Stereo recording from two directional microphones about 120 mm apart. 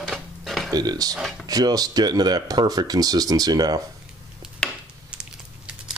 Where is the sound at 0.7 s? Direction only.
35° right (ahead or behind).